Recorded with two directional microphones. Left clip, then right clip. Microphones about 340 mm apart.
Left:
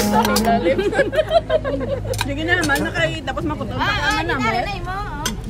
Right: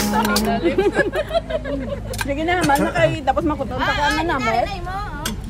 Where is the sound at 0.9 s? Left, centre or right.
Left.